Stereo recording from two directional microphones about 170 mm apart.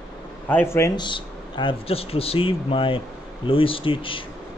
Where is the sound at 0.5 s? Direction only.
15° left (ahead or behind).